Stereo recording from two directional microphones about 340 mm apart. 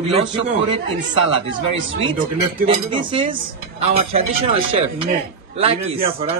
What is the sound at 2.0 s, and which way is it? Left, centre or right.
A man's voice, centre.